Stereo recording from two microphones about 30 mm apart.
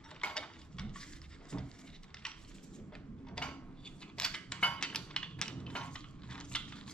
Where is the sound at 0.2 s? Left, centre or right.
Left.